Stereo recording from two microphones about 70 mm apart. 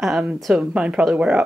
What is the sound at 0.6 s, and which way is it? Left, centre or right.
Speech, centre.